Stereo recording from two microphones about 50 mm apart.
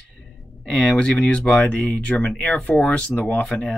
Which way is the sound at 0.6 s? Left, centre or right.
Left.